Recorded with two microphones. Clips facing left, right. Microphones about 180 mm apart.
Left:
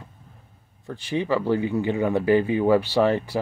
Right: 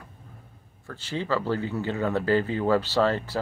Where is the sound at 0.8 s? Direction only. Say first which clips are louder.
Left 5 dB; 15° left (ahead or behind).